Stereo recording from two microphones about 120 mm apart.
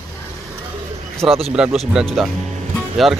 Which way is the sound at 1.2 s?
5° right (ahead or behind).